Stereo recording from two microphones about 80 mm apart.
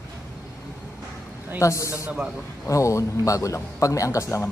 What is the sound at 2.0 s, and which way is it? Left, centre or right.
Speech, centre.